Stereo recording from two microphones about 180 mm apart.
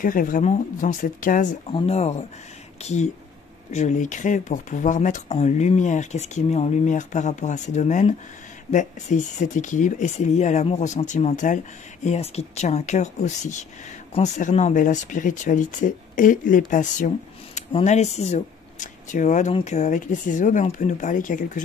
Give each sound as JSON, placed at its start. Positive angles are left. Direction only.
{"t": 0.0, "sound": "speech", "side_deg": 50}
{"t": 1.7, "sound": "speech", "side_deg": 30}